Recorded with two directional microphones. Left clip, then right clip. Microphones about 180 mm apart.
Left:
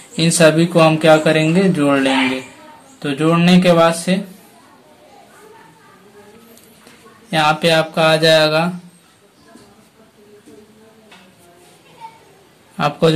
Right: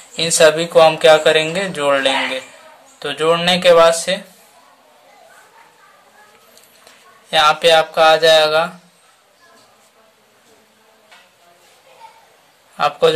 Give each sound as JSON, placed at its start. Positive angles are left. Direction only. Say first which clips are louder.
{"t": 0.1, "sound": "speech", "louder": "right 1 dB", "side_deg": -20}
{"t": 7.2, "sound": "speech", "louder": "right 3 dB", "side_deg": -25}
{"t": 12.7, "sound": "a man's voice", "louder": "right 1 dB", "side_deg": -15}